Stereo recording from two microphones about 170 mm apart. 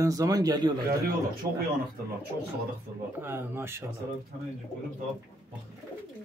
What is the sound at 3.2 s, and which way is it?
Speech, 15° right (ahead or behind).